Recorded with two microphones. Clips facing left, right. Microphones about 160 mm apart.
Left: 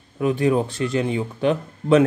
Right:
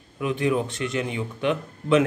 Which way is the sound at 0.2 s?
35° left (ahead or behind).